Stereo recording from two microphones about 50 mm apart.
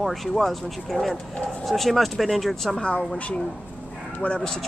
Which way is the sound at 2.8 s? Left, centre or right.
Left.